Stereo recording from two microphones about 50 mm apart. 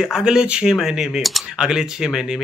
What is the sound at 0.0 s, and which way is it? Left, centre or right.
Speech, centre.